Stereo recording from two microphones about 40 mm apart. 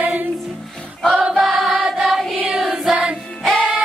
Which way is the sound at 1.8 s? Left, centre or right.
Centre.